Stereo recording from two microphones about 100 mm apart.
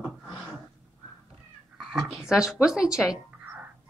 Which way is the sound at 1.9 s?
5° right (ahead or behind).